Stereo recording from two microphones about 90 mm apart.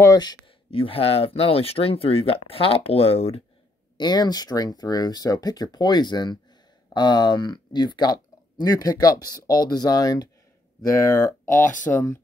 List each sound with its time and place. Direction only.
0.0 s speech: 45° left (ahead or behind)
0.7 s speech: 90° left
4.0 s speech: 50° left (ahead or behind)
10.9 s speech: 35° left (ahead or behind)